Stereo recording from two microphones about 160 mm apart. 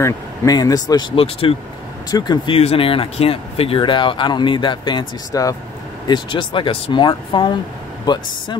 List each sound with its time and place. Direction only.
0.0 s speech: 20° left (ahead or behind)
1.1 s speech: 35° left (ahead or behind)
2.0 s speech: 25° left (ahead or behind)